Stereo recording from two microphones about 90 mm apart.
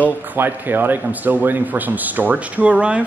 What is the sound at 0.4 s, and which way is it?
Speech, 20° right (ahead or behind).